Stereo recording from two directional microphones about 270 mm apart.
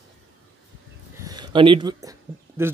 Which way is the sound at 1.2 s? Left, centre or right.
Centre.